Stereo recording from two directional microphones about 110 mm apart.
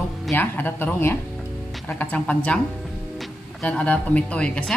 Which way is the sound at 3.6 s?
10° left (ahead or behind).